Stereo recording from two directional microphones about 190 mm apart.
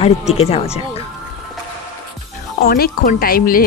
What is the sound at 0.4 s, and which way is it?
Speech, 30° left (ahead or behind).